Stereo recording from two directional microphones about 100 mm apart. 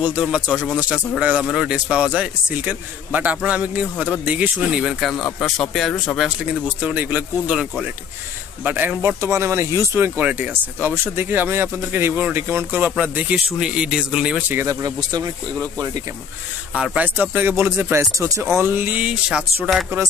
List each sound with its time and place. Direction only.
0.2 s speech: 5° right (ahead or behind)
0.7 s a man's voice: 10° right (ahead or behind)
5.1 s speech: 10° left (ahead or behind)
6.8 s a man's voice: 15° right (ahead or behind)
8.6 s speech: 20° right (ahead or behind)
9.2 s a man's voice: 30° right (ahead or behind); by 14.4 s 10° right (ahead or behind)
14.5 s speech: 25° right (ahead or behind)
15.0 s speech: 40° right (ahead or behind)
16.7 s a man's voice: 10° right (ahead or behind)